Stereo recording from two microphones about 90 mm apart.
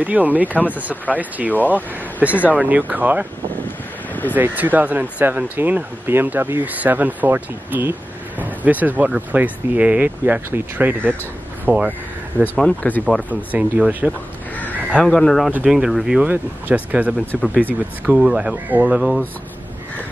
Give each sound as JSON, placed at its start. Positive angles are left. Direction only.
{"t": 0.0, "sound": "speech", "side_deg": -15}
{"t": 4.1, "sound": "vehicle", "side_deg": 20}
{"t": 4.4, "sound": "speech", "side_deg": -20}
{"t": 12.6, "sound": "speech", "side_deg": 15}
{"t": 13.3, "sound": "speech", "side_deg": -15}
{"t": 15.0, "sound": "speech", "side_deg": 5}
{"t": 16.2, "sound": "speech", "side_deg": -15}
{"t": 18.9, "sound": "speech", "side_deg": -5}